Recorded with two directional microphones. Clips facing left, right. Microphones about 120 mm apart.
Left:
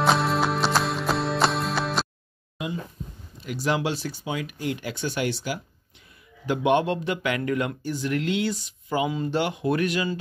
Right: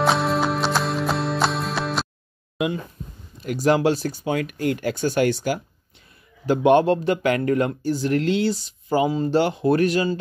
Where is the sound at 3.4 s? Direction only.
45° right (ahead or behind).